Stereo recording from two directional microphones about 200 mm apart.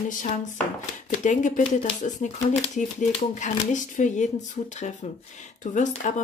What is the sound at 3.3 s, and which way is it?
Speech, 35° left (ahead or behind).